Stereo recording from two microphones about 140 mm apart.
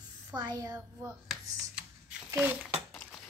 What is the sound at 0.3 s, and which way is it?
Speech, 30° right (ahead or behind).